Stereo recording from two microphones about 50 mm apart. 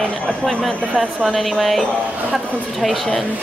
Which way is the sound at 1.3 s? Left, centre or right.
Centre.